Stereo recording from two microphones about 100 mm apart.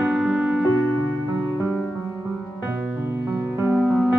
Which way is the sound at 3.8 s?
10° right (ahead or behind).